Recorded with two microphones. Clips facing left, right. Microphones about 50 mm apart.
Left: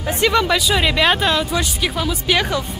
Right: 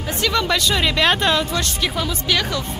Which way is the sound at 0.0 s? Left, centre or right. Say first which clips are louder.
Left 4 dB; left.